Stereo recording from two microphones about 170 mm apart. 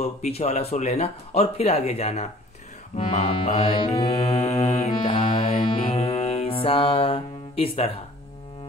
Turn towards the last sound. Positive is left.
turn(degrees=35)  # may be behind; listen again after turning